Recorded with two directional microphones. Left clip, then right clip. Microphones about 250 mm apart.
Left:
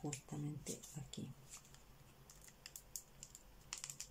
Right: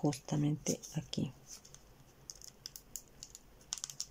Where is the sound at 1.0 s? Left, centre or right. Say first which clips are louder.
Right 11 dB; right.